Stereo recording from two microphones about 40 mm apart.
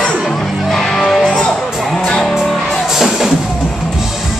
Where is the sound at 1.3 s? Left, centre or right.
Centre.